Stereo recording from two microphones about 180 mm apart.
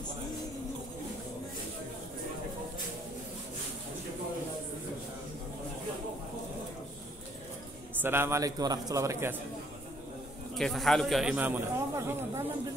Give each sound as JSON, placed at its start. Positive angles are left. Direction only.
{"t": 8.0, "sound": "a man's voice", "side_deg": -15}
{"t": 10.5, "sound": "a man's voice", "side_deg": 0}